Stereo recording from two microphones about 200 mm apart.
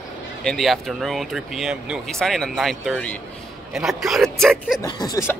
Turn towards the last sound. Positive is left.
turn(degrees=15)  # may be behind; listen again after turning